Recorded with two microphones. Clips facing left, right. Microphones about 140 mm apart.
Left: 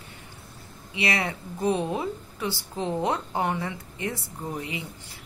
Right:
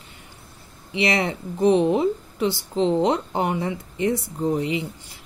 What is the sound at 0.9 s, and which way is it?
Speech, 25° right (ahead or behind).